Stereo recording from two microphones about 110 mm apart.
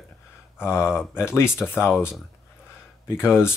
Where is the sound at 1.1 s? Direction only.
25° left (ahead or behind).